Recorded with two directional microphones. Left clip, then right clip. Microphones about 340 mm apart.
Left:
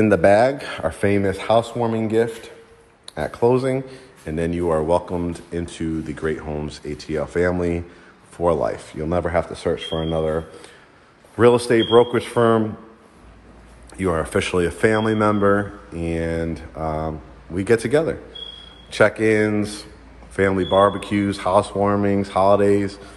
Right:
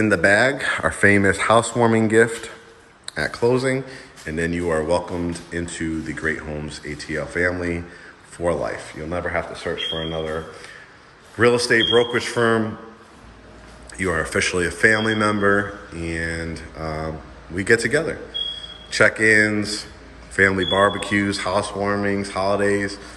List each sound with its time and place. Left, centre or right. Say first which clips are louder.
0.0 s speech: left 2 dB; centre
13.9 s speech: even; centre